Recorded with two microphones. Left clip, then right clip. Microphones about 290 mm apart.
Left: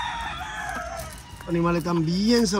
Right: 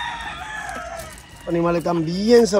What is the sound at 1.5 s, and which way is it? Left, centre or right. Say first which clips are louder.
A man's voice: right 5 dB; centre.